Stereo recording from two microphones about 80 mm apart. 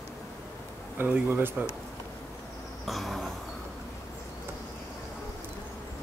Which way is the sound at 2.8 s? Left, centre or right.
Centre.